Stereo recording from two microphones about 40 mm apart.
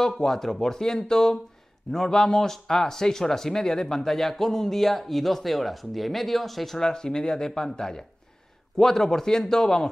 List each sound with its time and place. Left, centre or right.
0.2 s speech: centre
6.9 s speech: centre